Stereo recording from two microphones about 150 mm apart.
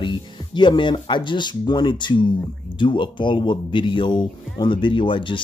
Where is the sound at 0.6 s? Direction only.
30° left (ahead or behind).